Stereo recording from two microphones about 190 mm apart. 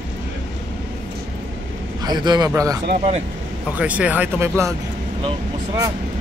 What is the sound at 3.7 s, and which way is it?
Speech, 5° right (ahead or behind).